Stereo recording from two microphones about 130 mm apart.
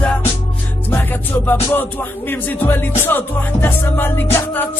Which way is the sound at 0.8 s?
15° left (ahead or behind).